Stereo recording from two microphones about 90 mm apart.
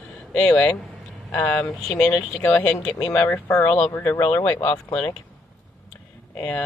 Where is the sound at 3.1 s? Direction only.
25° left (ahead or behind).